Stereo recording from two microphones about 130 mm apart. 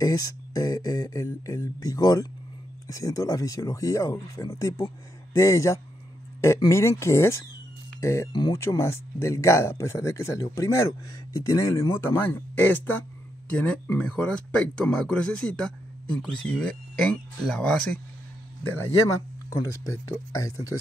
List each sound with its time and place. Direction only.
0.0 s speech: 30° left (ahead or behind)
8.3 s speech: 35° left (ahead or behind)
8.5 s speech: 20° left (ahead or behind)
20.3 s speech: 25° left (ahead or behind)